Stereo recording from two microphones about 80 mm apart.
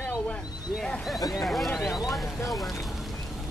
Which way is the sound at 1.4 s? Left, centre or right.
Centre.